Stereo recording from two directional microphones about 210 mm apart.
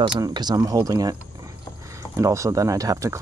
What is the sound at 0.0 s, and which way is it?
Speech, 20° right (ahead or behind).